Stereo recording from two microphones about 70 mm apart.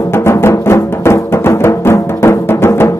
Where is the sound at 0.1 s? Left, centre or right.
Left.